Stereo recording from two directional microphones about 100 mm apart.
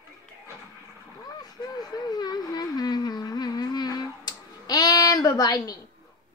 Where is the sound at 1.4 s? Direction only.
40° left (ahead or behind).